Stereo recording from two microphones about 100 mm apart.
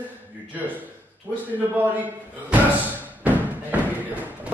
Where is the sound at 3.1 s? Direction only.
15° right (ahead or behind).